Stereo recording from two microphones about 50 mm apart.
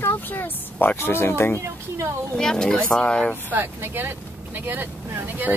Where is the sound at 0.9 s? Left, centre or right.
Left.